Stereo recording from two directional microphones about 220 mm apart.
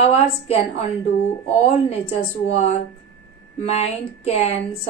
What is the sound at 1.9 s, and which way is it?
Female singing, 30° left (ahead or behind).